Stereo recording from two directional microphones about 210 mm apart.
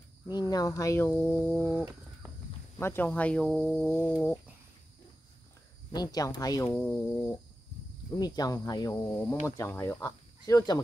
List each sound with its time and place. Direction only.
0.3 s speech: 20° left (ahead or behind)
1.1 s speech: centre (ahead or behind)
1.6 s speech: 10° left (ahead or behind)
5.9 s speech: 20° left (ahead or behind)